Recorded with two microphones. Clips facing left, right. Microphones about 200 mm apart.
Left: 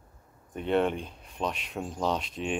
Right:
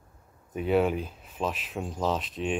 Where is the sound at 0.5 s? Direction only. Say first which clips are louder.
Right 2 dB; 5° right (ahead or behind).